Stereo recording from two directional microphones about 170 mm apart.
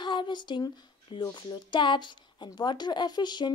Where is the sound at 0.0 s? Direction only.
25° left (ahead or behind).